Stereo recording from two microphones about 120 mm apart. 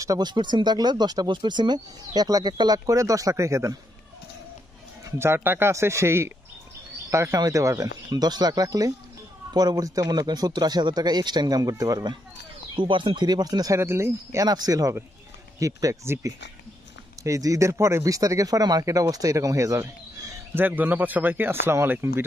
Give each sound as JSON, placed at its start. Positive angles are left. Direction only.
{"t": 0.0, "sound": "speech", "side_deg": -30}
{"t": 5.2, "sound": "speech", "side_deg": -20}
{"t": 12.7, "sound": "speech", "side_deg": -45}
{"t": 20.5, "sound": "speech", "side_deg": -15}